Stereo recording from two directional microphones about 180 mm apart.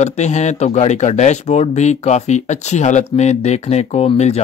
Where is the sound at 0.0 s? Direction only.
40° left (ahead or behind).